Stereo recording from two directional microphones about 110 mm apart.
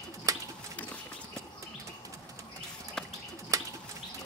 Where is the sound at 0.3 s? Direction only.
30° right (ahead or behind).